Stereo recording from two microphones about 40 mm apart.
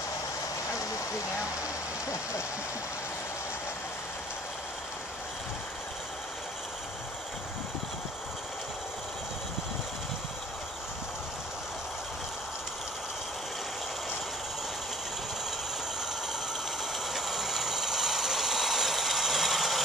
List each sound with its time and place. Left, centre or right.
16.9 s vehicle: centre